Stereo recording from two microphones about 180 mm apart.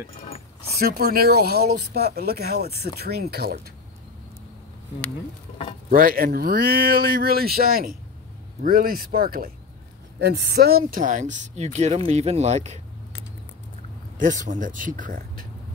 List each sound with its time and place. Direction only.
0.7 s speech: 60° right (ahead or behind)
5.9 s speech: 50° right (ahead or behind)
10.2 s speech: 70° right (ahead or behind); by 12.8 s 40° right (ahead or behind)
14.4 s speech: 45° right (ahead or behind)